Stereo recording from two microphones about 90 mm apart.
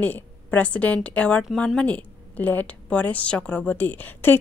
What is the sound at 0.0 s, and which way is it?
A woman's voice, 20° left (ahead or behind).